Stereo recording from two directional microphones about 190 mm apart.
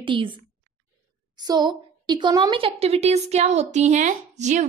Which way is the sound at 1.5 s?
20° right (ahead or behind).